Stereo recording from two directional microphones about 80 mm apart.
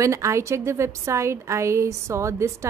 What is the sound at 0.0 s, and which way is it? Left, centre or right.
Speech, right.